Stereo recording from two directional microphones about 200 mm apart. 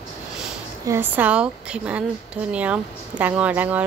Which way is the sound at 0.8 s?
10° right (ahead or behind).